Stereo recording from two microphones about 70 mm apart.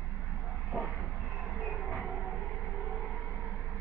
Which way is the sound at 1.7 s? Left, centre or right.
Centre.